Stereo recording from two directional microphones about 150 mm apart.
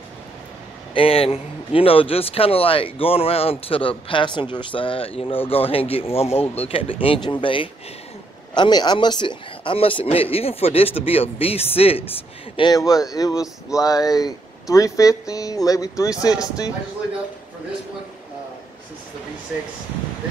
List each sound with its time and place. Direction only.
0.9 s a man's voice: 40° left (ahead or behind)
12.5 s speech: 25° left (ahead or behind)